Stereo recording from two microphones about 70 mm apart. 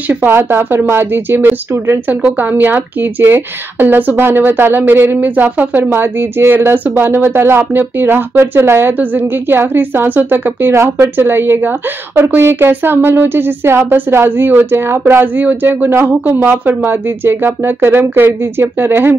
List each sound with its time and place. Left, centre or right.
0.3 s speech: right
10.7 s speech: right